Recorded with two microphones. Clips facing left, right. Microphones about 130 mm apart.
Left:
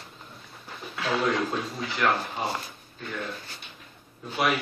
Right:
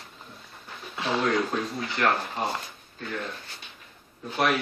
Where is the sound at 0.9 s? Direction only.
25° right (ahead or behind).